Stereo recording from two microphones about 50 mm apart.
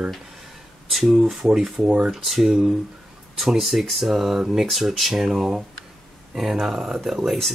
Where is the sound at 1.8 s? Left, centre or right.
Right.